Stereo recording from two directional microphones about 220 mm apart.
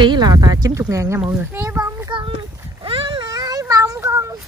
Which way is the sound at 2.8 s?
25° right (ahead or behind).